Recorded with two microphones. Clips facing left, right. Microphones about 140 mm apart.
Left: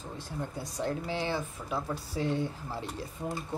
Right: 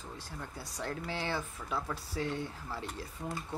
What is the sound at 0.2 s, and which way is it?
Speech, 20° left (ahead or behind).